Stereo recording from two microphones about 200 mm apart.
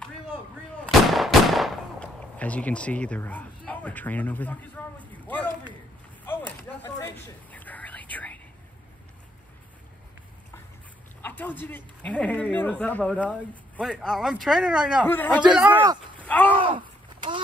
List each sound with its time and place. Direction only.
1.0 s gunshot: centre (ahead or behind)
6.2 s chop: 10° left (ahead or behind)
7.5 s whispering: 10° left (ahead or behind)
11.2 s speech: 10° left (ahead or behind)
15.0 s speech: 10° left (ahead or behind)
15.4 s speech: 5° right (ahead or behind)
15.8 s speech: 20° right (ahead or behind)
16.2 s a sound: 10° left (ahead or behind)